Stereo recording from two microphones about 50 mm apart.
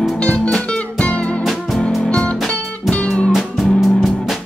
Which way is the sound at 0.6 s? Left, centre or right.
Centre.